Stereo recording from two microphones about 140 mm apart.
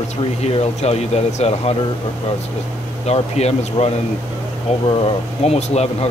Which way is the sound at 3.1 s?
50° left (ahead or behind).